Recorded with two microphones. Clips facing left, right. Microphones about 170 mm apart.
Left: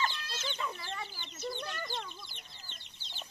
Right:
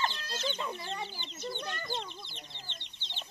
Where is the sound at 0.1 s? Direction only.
35° right (ahead or behind).